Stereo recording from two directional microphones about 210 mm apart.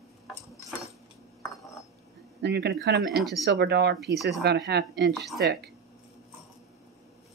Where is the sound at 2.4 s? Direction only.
55° right (ahead or behind).